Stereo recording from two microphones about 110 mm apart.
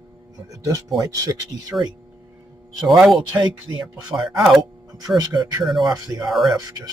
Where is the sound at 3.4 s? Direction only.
40° right (ahead or behind).